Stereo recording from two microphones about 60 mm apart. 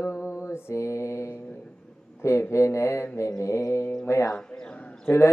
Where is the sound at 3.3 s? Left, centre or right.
Left.